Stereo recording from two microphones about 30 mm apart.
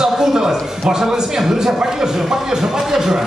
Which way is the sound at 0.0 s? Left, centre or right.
Centre.